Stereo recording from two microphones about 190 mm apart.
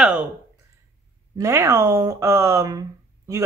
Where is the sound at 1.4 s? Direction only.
15° right (ahead or behind).